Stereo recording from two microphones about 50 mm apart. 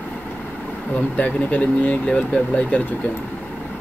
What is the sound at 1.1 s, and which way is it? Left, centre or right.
Speech, left.